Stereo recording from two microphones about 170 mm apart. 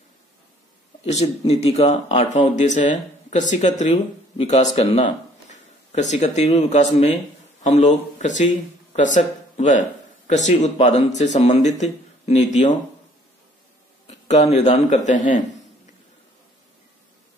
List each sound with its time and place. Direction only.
1.5 s speech: 40° left (ahead or behind)
14.0 s a man's voice: 40° left (ahead or behind)